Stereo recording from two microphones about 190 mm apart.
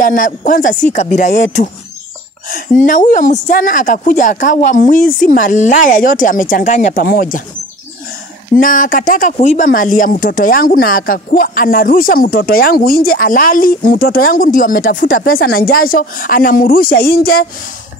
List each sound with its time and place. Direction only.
0.0 s speech: 45° left (ahead or behind)
8.5 s speech: 45° left (ahead or behind)